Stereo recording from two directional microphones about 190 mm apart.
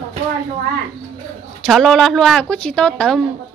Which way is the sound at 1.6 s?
Centre (ahead or behind).